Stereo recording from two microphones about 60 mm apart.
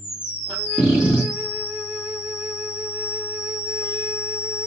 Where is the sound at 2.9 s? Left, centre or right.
Right.